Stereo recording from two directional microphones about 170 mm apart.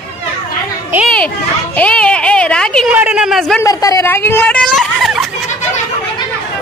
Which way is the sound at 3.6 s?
20° left (ahead or behind).